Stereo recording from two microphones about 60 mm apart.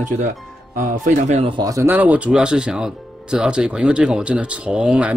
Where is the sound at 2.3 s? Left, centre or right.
Centre.